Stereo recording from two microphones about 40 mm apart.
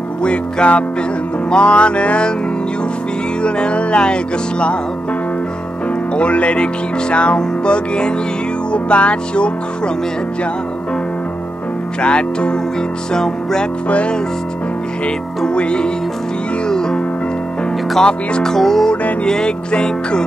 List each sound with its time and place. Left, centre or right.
0.2 s music: left
3.4 s music: left
6.1 s music: left
12.0 s music: left
13.8 s music: left
15.4 s music: left
18.0 s music: centre
19.2 s music: centre